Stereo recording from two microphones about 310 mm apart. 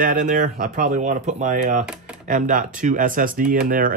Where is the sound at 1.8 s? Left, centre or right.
Centre.